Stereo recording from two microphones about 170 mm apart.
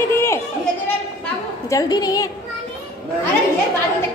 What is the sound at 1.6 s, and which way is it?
Speech, 20° left (ahead or behind).